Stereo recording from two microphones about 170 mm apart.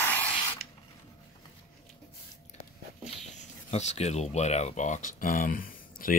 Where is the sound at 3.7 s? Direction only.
40° left (ahead or behind); by 6.1 s 55° left (ahead or behind).